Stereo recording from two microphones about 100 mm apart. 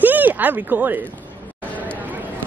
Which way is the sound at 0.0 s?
20° right (ahead or behind).